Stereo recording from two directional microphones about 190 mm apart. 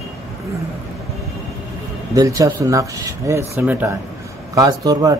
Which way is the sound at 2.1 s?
20° right (ahead or behind).